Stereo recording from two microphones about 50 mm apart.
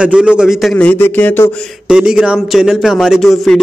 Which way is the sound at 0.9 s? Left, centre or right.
Left.